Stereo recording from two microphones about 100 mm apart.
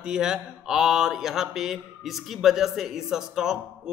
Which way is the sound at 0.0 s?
5° right (ahead or behind).